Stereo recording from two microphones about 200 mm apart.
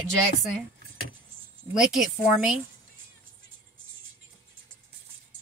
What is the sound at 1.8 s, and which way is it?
Speech, centre (ahead or behind).